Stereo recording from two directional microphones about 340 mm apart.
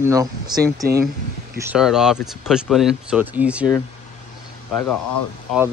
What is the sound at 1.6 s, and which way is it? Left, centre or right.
Speech, centre.